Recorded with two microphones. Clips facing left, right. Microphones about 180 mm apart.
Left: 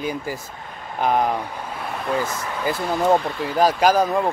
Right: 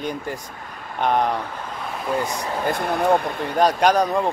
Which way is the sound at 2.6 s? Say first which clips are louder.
Left 1 dB; 55° right (ahead or behind).